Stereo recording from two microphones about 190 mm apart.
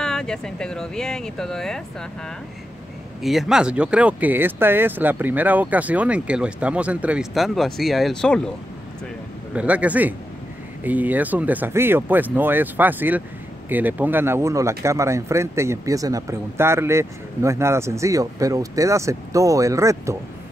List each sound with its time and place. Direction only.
0.0 s speech: 5° left (ahead or behind)
9.5 s speech: 5° right (ahead or behind)